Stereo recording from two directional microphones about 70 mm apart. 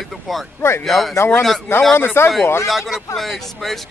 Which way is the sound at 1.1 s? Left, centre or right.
Left.